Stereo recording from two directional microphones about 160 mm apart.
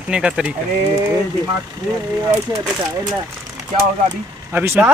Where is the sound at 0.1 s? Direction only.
5° right (ahead or behind).